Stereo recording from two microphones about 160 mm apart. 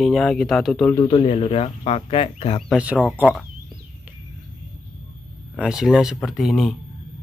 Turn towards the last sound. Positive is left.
turn(degrees=0)  # may be behind; listen again after turning